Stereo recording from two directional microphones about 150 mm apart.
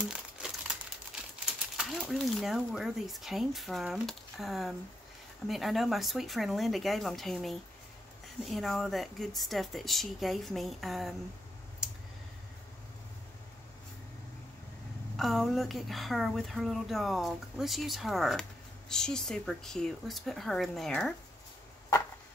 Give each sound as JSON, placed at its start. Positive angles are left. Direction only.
{"t": 0.0, "sound": "crumpling", "side_deg": -5}
{"t": 1.4, "sound": "speech", "side_deg": -5}
{"t": 15.1, "sound": "speech", "side_deg": 0}